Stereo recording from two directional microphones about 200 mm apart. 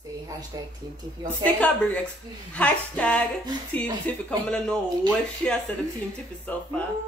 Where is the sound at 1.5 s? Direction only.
5° left (ahead or behind).